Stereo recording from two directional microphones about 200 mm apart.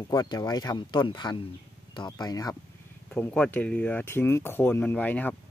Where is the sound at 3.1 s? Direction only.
5° left (ahead or behind).